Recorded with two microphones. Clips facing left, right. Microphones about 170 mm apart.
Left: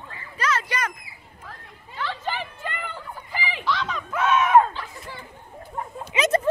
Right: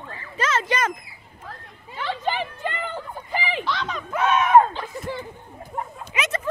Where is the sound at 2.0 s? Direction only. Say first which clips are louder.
Right 4 dB; 20° right (ahead or behind).